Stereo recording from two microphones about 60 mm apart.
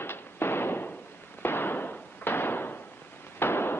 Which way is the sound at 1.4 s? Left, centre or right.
Left.